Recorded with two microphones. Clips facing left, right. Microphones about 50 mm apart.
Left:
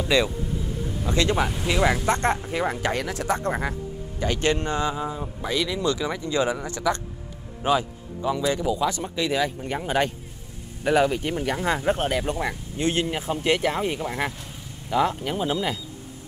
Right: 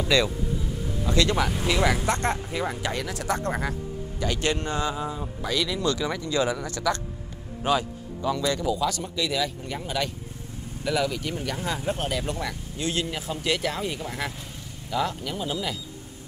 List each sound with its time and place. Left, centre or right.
1.0 s a man's voice: left
2.3 s speech: centre
2.7 s a man's voice: left
4.9 s a man's voice: centre; by 15.8 s left